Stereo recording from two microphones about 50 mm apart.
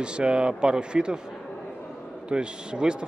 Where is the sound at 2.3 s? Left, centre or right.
Centre.